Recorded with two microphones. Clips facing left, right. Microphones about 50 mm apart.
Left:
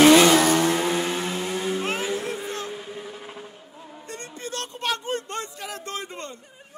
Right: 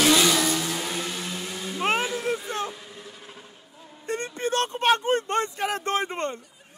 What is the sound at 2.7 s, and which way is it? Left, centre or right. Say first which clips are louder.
Vehicle: left 7 dB; left.